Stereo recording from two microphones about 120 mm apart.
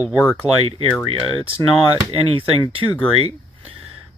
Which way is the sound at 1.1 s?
50° right (ahead or behind).